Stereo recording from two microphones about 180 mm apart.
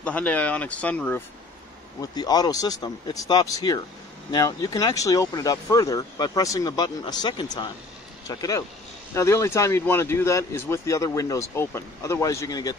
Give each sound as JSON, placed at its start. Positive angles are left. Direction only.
{"t": 0.0, "sound": "speech", "side_deg": 10}
{"t": 2.0, "sound": "speech", "side_deg": 20}